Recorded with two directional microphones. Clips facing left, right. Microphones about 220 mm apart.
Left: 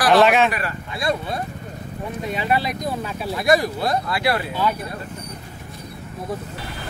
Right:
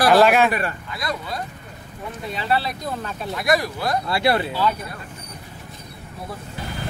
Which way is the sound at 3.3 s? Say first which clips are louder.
Left 3 dB; 25° left (ahead or behind).